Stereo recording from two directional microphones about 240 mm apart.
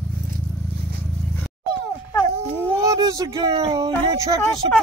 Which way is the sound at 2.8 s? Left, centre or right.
Centre.